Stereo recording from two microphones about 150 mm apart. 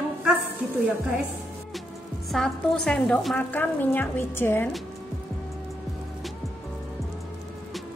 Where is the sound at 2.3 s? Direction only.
5° left (ahead or behind).